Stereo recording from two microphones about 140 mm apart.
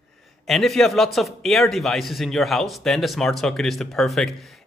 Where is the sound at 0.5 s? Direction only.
Centre (ahead or behind).